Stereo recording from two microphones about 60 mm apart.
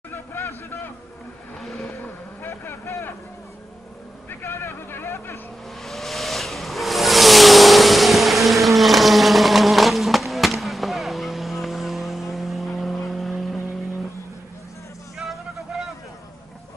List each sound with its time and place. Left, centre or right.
0.1 s a sound: left
1.6 s vehicle: centre
2.0 s vehicle: left
4.3 s vehicle: left
5.8 s vehicle: centre